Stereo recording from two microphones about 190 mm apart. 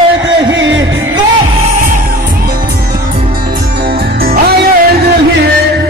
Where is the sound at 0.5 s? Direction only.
75° right (ahead or behind).